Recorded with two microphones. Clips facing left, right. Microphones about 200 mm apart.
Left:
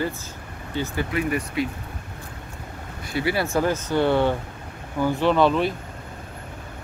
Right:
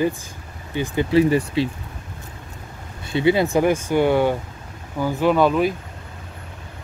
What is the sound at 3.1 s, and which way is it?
Speech, 20° right (ahead or behind).